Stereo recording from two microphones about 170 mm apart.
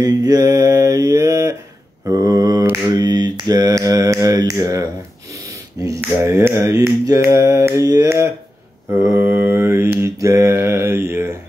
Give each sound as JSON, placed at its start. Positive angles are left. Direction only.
{"t": 0.0, "sound": "mantra", "side_deg": -25}
{"t": 5.8, "sound": "a sound", "side_deg": -20}
{"t": 6.3, "sound": "mantra", "side_deg": -15}